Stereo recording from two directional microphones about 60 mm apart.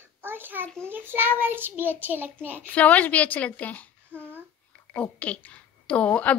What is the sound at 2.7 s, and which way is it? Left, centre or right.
Speech, left.